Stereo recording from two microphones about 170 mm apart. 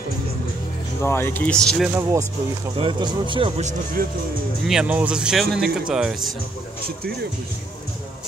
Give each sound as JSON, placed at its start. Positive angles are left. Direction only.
{"t": 1.0, "sound": "speech", "side_deg": 15}
{"t": 2.8, "sound": "speech", "side_deg": -30}
{"t": 3.6, "sound": "speech", "side_deg": -55}
{"t": 4.6, "sound": "speech", "side_deg": -5}